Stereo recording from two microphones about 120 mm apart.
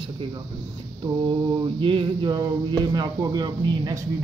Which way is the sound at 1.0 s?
45° right (ahead or behind).